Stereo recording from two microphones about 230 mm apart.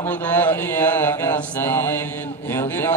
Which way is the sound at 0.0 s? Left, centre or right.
Centre.